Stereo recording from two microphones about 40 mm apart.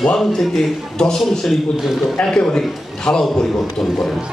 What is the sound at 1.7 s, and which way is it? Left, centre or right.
Speech, centre.